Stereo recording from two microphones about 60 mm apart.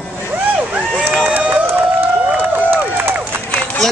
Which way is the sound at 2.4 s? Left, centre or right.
Right.